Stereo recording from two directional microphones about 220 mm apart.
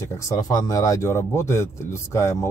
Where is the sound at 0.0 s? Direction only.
15° left (ahead or behind).